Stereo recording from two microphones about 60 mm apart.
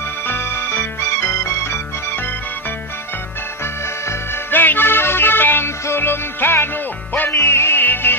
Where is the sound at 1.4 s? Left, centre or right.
Left.